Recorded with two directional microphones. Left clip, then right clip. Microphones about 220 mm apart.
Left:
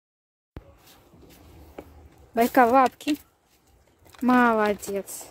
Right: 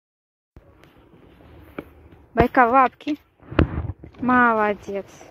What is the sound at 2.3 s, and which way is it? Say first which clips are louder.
Speech: right 3 dB; 5° left (ahead or behind).